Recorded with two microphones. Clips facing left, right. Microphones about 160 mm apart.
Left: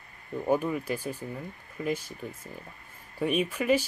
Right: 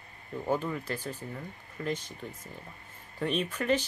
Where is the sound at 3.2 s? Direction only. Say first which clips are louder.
Left 3 dB; 10° left (ahead or behind).